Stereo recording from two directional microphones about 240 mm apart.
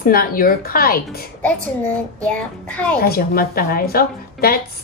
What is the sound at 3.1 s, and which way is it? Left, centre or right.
A woman's voice, left.